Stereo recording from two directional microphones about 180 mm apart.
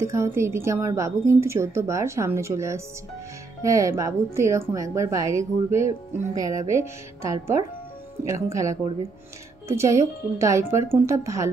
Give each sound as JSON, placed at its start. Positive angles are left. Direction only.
{"t": 0.0, "sound": "a woman's voice", "side_deg": -15}